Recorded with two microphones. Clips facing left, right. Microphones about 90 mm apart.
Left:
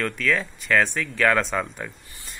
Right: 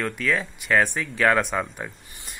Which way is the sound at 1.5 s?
15° right (ahead or behind).